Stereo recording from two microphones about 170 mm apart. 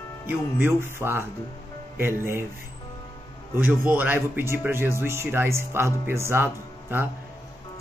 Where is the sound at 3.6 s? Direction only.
10° right (ahead or behind).